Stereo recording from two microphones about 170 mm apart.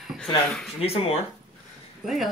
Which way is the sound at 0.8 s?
35° left (ahead or behind).